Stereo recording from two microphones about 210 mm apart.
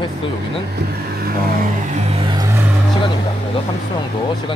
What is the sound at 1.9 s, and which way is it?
Vehicle, 25° right (ahead or behind).